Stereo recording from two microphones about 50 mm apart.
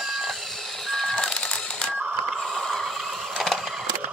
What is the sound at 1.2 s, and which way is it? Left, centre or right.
Crushing, centre.